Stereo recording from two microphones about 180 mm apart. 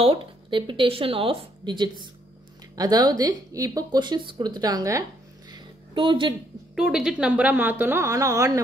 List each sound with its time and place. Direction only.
0.0 s speech: 30° right (ahead or behind)
5.5 s a sound: 25° right (ahead or behind)
6.7 s a woman's voice: 5° right (ahead or behind)